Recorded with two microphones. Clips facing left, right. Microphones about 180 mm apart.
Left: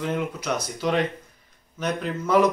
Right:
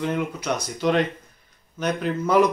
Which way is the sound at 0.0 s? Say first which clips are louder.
Right 1 dB; 5° left (ahead or behind).